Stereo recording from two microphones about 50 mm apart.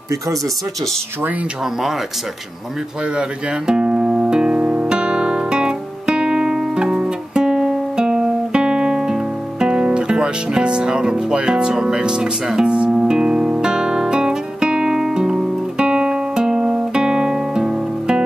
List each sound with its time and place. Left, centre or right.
3.2 s speech: centre
4.6 s guitar: right